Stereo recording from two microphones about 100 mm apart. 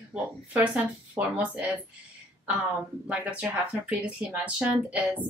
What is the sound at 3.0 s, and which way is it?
Speech, 15° right (ahead or behind).